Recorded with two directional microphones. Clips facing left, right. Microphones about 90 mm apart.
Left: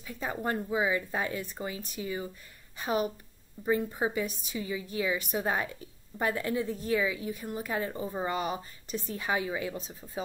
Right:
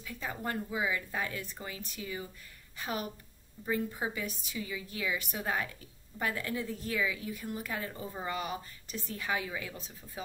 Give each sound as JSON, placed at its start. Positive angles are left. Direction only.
{"t": 0.0, "sound": "a woman's voice", "side_deg": 25}